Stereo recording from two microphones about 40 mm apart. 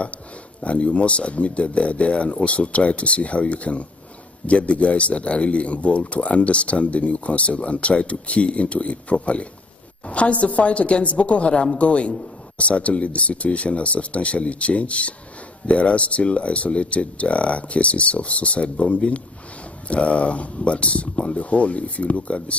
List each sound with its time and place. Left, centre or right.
0.0 s speech: left